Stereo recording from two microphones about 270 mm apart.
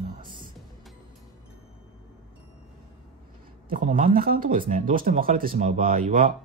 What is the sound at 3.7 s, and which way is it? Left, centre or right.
Speech, right.